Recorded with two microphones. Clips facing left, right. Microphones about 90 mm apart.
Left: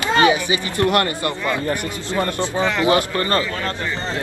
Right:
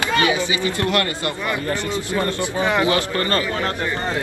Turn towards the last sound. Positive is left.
turn(degrees=25)  # may be behind; listen again after turning